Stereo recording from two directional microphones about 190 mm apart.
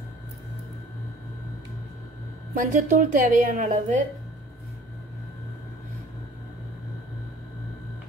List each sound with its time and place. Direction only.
2.5 s a woman's voice: 40° right (ahead or behind)